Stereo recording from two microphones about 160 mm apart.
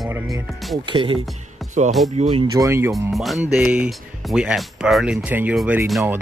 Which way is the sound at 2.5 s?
20° right (ahead or behind).